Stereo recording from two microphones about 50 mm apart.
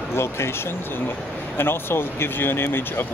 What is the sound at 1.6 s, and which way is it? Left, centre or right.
Speech, left.